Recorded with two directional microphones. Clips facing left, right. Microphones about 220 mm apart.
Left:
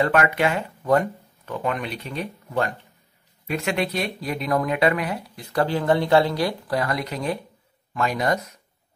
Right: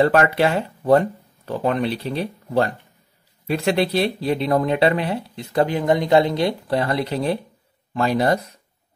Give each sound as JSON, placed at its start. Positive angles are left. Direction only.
{"t": 0.0, "sound": "speech", "side_deg": -35}